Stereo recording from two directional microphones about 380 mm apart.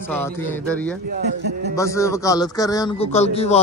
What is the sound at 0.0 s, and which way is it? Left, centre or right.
Speech, centre.